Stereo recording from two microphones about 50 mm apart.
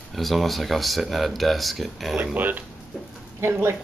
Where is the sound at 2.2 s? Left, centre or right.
Right.